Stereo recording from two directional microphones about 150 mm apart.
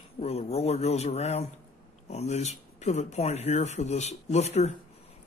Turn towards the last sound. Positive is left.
turn(degrees=45)  # may be behind; listen again after turning